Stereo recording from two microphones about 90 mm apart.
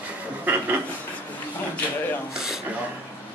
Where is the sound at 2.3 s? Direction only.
5° right (ahead or behind).